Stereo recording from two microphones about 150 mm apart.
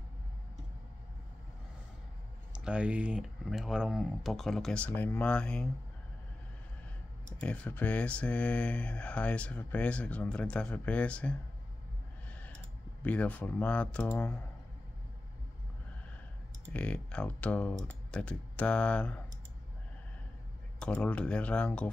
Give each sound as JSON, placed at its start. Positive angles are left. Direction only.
{"t": 2.5, "sound": "speech", "side_deg": -5}
{"t": 7.3, "sound": "mantra", "side_deg": 10}
{"t": 12.4, "sound": "speech", "side_deg": 10}
{"t": 16.7, "sound": "mantra", "side_deg": 10}
{"t": 20.8, "sound": "mantra", "side_deg": 10}